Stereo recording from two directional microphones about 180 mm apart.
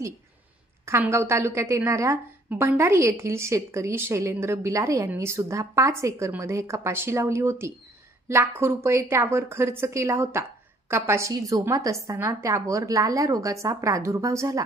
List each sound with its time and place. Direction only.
0.8 s a woman's voice: 15° right (ahead or behind)